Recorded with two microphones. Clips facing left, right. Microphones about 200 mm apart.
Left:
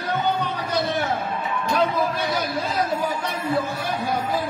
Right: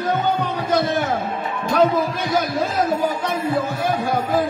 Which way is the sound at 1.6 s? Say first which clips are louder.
Right 5 dB; 45° right (ahead or behind).